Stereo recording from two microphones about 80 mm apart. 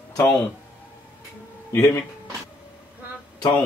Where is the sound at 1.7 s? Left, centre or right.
Left.